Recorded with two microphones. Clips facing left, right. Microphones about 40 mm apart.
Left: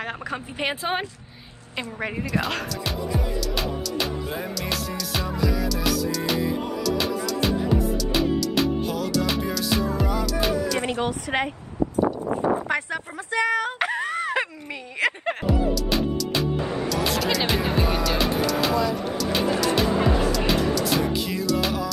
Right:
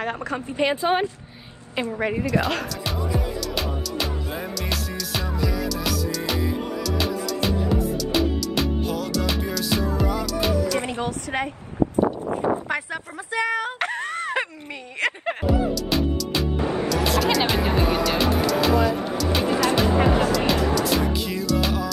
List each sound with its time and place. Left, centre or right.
0.0 s speech: centre
1.8 s speech: centre
11.0 s a woman's voice: left
12.6 s speech: centre
13.7 s a sound: centre
15.0 s music: centre
16.6 s music: right
16.9 s music: centre
19.9 s music: right
20.2 s music: centre